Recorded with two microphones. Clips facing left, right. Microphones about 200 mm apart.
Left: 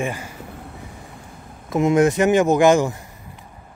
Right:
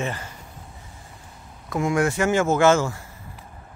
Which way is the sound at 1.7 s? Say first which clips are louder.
Left 6 dB; 20° left (ahead or behind).